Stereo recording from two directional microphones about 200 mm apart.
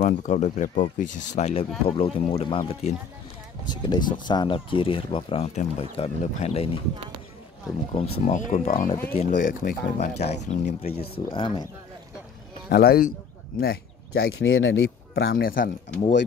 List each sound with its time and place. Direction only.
0.0 s speech: 35° left (ahead or behind)
3.6 s speech: 20° left (ahead or behind)
7.9 s speech: 35° left (ahead or behind)
11.3 s speech: 20° left (ahead or behind)
12.6 s speech: 50° left (ahead or behind)